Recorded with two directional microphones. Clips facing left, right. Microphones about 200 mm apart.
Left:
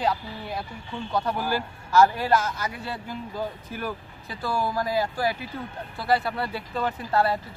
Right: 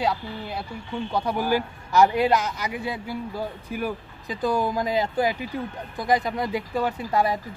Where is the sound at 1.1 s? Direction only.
10° right (ahead or behind).